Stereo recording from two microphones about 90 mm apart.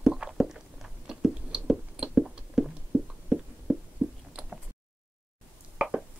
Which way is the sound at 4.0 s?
20° right (ahead or behind).